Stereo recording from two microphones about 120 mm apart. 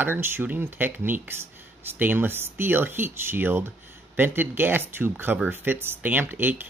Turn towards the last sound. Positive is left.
turn(degrees=-15)  # may be behind; listen again after turning